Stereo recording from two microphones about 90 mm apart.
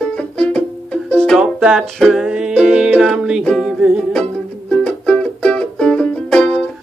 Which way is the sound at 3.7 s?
10° right (ahead or behind).